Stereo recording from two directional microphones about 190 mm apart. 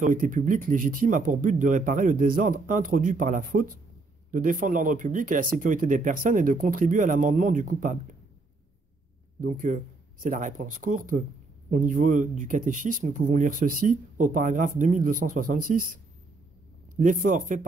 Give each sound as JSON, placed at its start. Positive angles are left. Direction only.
{"t": 0.0, "sound": "speech", "side_deg": -45}
{"t": 9.4, "sound": "speech", "side_deg": -40}